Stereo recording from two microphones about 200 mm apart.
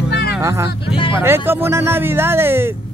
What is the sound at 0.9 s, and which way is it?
Speech, 25° left (ahead or behind).